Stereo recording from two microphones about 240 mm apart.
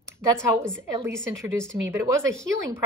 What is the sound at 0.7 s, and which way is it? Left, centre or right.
A woman's voice, centre.